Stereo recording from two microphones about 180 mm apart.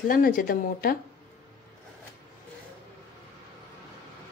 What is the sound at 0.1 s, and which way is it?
Speech, 50° left (ahead or behind).